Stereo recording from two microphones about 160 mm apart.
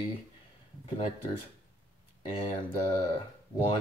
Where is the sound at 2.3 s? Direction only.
20° left (ahead or behind).